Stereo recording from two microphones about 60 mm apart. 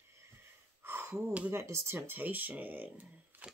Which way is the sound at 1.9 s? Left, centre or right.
Right.